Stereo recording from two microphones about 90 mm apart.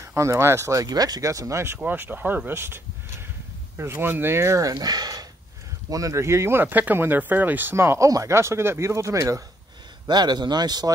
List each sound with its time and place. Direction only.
0.0 s speech: 30° right (ahead or behind)
1.8 s speech: 20° right (ahead or behind); by 9.4 s 35° right (ahead or behind)
10.0 s speech: 50° right (ahead or behind)